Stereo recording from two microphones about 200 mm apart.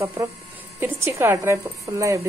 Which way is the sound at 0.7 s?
10° right (ahead or behind).